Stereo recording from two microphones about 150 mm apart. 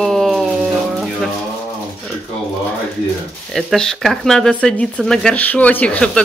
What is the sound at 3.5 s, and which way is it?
Speech, 5° left (ahead or behind).